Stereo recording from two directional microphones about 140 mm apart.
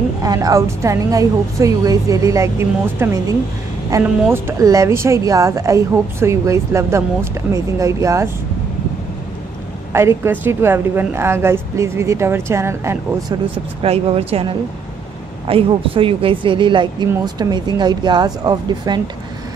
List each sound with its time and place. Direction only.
0.2 s a woman's voice: 25° right (ahead or behind)
9.9 s a woman's voice: 20° right (ahead or behind)
13.8 s a woman's voice: 45° right (ahead or behind)